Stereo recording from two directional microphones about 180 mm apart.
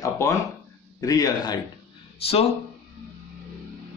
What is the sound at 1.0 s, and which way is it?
Speech, 20° left (ahead or behind).